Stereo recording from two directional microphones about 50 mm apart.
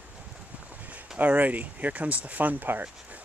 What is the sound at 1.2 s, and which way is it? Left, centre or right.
Speech, right.